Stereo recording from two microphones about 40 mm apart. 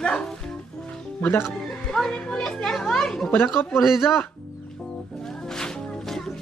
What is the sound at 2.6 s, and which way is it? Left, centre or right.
Children playing, centre.